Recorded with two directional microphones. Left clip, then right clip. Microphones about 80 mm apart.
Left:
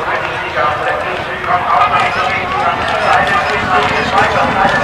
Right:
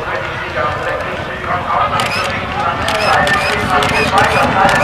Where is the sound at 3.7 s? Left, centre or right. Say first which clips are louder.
Even; centre.